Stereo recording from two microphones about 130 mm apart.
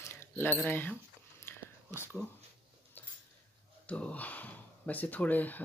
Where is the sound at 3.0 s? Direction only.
15° left (ahead or behind).